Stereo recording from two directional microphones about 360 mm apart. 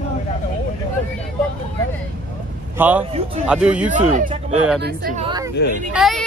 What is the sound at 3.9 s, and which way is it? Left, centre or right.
Speech, right.